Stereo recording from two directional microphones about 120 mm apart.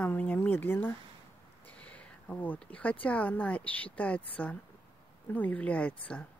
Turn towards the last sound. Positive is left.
turn(degrees=10)  # may be behind; listen again after turning